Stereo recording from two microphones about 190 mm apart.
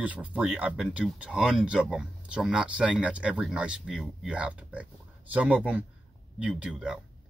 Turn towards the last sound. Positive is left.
turn(degrees=-5)  # may be behind; listen again after turning